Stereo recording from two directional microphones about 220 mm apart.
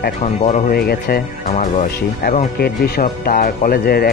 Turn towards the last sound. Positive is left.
turn(degrees=45)  # may be behind; listen again after turning